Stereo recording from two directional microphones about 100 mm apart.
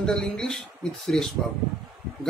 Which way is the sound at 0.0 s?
5° left (ahead or behind).